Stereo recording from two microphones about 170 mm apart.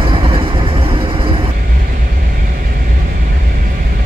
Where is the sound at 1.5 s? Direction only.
55° right (ahead or behind).